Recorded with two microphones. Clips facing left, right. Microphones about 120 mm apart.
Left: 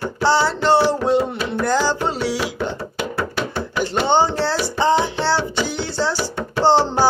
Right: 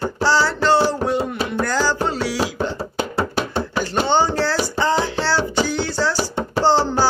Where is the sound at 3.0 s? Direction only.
30° right (ahead or behind).